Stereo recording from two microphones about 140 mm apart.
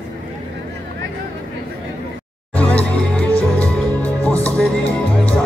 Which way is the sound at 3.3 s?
20° right (ahead or behind).